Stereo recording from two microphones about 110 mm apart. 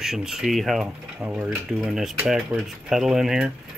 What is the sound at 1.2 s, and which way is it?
Speech, 20° right (ahead or behind).